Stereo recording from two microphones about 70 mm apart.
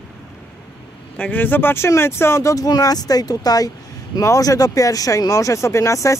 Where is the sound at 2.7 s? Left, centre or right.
Left.